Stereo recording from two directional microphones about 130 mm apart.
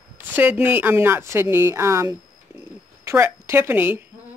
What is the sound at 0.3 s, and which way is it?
Speech, 15° right (ahead or behind).